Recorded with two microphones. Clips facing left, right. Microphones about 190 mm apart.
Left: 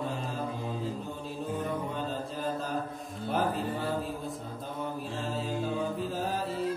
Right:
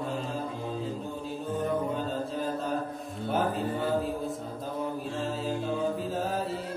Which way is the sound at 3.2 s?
Centre (ahead or behind).